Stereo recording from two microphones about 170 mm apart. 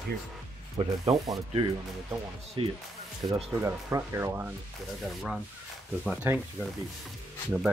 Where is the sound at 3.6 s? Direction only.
15° right (ahead or behind).